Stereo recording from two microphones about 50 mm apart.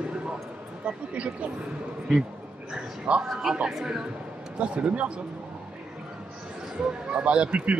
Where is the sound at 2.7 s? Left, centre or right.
Centre.